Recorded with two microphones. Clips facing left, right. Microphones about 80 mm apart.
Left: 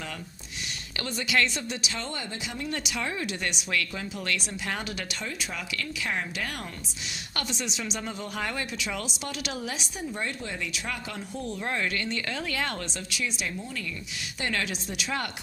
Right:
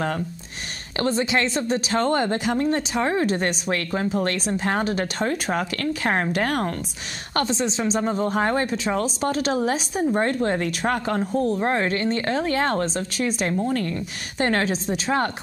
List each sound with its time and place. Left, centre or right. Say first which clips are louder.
0.9 s speech: right 6 dB; right
7.3 s speech: right 11 dB; right